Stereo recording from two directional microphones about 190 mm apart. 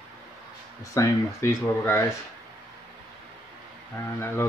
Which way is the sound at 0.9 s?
15° left (ahead or behind).